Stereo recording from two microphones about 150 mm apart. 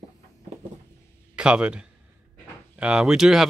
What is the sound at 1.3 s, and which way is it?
Speech, 5° right (ahead or behind).